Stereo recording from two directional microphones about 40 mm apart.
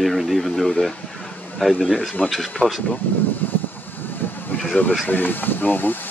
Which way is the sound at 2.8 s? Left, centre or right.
Left.